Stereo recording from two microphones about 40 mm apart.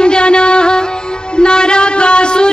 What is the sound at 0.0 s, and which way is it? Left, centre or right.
Music, left.